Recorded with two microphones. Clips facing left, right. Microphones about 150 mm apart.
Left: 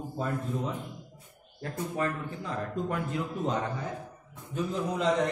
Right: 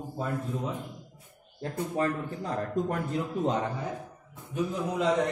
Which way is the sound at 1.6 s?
35° right (ahead or behind).